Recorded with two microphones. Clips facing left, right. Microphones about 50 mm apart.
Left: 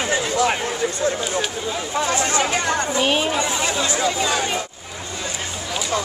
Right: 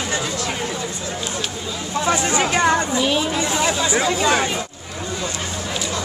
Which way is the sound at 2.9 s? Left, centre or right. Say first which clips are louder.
Even; left.